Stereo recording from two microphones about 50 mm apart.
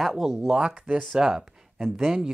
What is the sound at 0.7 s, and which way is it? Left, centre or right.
Speech, right.